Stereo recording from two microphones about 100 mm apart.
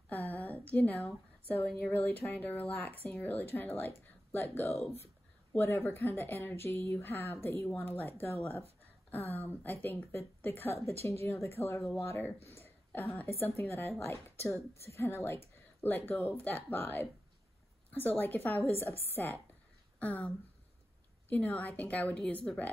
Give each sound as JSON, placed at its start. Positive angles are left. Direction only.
{"t": 0.1, "sound": "a sound", "side_deg": 20}
{"t": 1.7, "sound": "speech", "side_deg": 15}
{"t": 9.1, "sound": "speech", "side_deg": 20}